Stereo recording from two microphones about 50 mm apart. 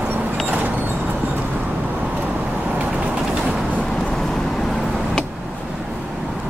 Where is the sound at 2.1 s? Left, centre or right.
Right.